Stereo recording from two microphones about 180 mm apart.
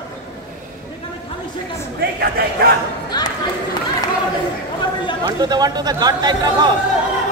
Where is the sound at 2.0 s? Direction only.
60° right (ahead or behind).